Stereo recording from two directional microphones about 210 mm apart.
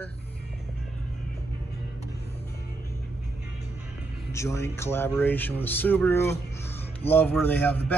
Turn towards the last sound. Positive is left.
turn(degrees=10)  # may be behind; listen again after turning